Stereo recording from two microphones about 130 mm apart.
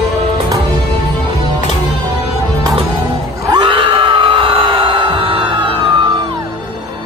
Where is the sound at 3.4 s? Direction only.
35° right (ahead or behind).